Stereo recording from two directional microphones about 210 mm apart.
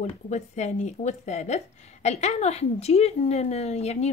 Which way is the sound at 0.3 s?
35° left (ahead or behind).